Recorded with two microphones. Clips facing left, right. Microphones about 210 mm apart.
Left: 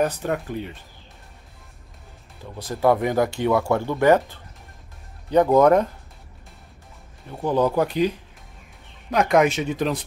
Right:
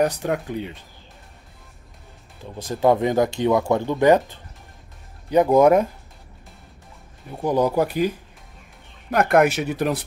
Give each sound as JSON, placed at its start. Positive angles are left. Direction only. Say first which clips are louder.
{"t": 0.0, "sound": "speech", "louder": "right 2 dB", "side_deg": -15}
{"t": 2.5, "sound": "speech", "louder": "right 1 dB", "side_deg": -20}
{"t": 7.2, "sound": "speech", "louder": "right 1 dB", "side_deg": -10}
{"t": 9.1, "sound": "speech", "louder": "right 1 dB", "side_deg": -5}